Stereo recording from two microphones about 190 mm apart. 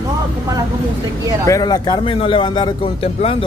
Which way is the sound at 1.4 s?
20° left (ahead or behind).